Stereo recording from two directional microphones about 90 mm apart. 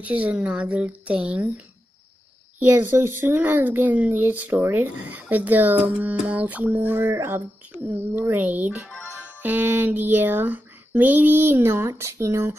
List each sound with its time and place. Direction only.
0.0 s a woman's voice: 15° right (ahead or behind)
2.7 s speech: 20° right (ahead or behind)